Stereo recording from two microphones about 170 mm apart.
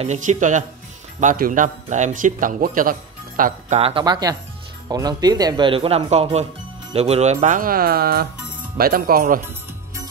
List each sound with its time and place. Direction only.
0.0 s speech: 45° right (ahead or behind)
4.0 s speech: 25° right (ahead or behind); by 9.4 s 55° right (ahead or behind)